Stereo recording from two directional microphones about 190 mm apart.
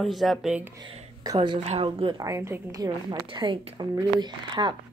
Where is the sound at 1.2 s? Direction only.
25° right (ahead or behind).